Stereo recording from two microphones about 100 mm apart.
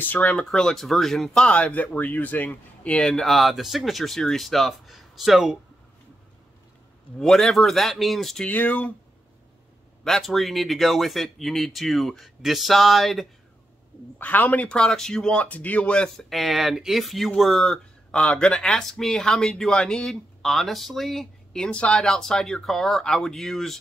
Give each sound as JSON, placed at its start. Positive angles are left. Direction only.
{"t": 0.0, "sound": "speech", "side_deg": 15}
{"t": 0.5, "sound": "speech", "side_deg": 5}
{"t": 7.2, "sound": "speech", "side_deg": 5}
{"t": 8.5, "sound": "speech", "side_deg": 15}
{"t": 10.0, "sound": "speech", "side_deg": 0}
{"t": 14.1, "sound": "speech", "side_deg": 15}
{"t": 14.8, "sound": "speech", "side_deg": 5}